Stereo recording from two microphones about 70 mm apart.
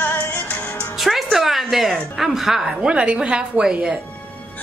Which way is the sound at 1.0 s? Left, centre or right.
Centre.